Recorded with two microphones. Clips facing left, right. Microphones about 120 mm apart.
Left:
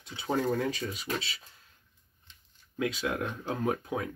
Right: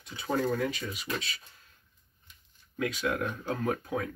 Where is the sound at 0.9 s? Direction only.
25° left (ahead or behind).